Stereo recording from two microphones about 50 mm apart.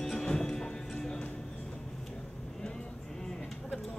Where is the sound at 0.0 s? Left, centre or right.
Centre.